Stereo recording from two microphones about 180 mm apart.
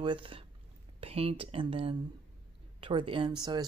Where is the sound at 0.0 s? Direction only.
30° right (ahead or behind).